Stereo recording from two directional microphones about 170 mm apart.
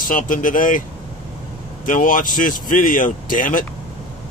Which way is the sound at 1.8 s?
50° left (ahead or behind).